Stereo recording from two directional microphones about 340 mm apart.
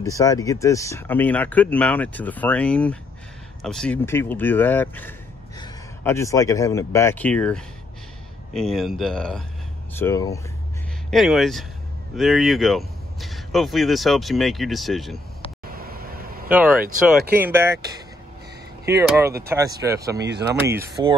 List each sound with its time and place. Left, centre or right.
0.0 s speech: centre
15.8 s vehicle: right
16.4 s speech: centre
18.9 s speech: centre
20.2 s speech: right
20.6 s speech: centre